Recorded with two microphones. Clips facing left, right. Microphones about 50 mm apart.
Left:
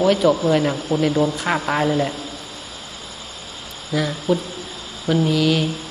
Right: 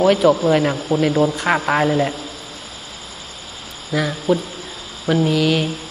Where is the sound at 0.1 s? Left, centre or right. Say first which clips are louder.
Right 2 dB; centre.